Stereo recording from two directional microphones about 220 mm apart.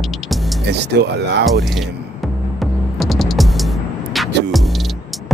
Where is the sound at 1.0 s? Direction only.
50° right (ahead or behind).